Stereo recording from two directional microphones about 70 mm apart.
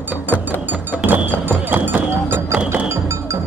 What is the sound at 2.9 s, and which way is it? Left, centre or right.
Music, right.